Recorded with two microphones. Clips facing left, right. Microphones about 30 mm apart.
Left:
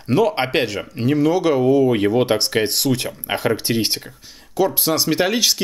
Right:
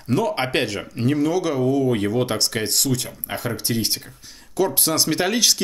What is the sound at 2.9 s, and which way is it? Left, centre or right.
Speech, left.